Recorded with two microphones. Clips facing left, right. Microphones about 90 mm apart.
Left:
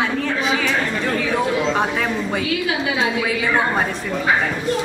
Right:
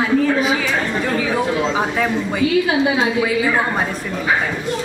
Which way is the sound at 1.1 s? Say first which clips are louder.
Right 1 dB; 5° right (ahead or behind).